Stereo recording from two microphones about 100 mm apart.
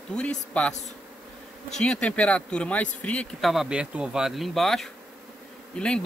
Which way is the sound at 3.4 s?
5° right (ahead or behind).